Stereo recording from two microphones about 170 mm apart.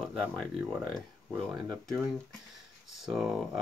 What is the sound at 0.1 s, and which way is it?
Speech, 5° left (ahead or behind).